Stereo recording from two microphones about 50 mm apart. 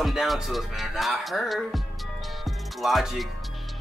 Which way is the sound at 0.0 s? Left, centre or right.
Centre.